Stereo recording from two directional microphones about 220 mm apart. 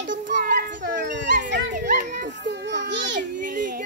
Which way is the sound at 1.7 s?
35° right (ahead or behind).